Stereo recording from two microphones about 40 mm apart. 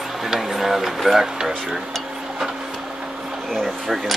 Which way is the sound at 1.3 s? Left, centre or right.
Centre.